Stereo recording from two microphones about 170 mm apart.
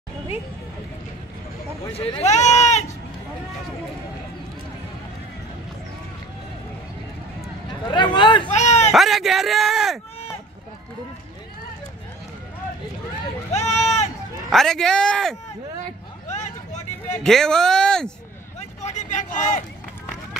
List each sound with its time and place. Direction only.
2.0 s speech: 40° left (ahead or behind)
7.9 s speech: 30° left (ahead or behind)
8.5 s a sound: 45° left (ahead or behind)
8.9 s speech: centre (ahead or behind)
13.5 s a sound: 40° left (ahead or behind)
14.5 s speech: centre (ahead or behind)
16.3 s vehicle: 45° left (ahead or behind)
17.2 s speech: 5° left (ahead or behind)
18.6 s a sound: 40° left (ahead or behind)